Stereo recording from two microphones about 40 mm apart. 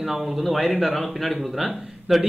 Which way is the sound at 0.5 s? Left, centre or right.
Centre.